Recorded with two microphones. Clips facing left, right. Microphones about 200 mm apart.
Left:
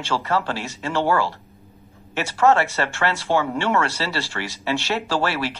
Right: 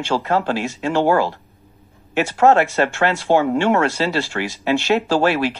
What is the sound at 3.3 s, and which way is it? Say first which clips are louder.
Speech: right 5 dB; 40° right (ahead or behind).